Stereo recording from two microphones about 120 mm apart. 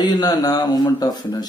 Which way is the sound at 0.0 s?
35° left (ahead or behind).